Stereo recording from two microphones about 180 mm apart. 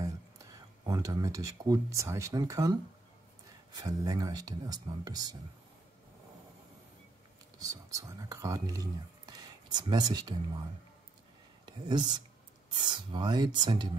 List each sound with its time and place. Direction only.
0.8 s speech: 20° right (ahead or behind)
7.5 s speech: 20° right (ahead or behind)
11.7 s a sound: 25° right (ahead or behind)
12.7 s speech: 25° right (ahead or behind)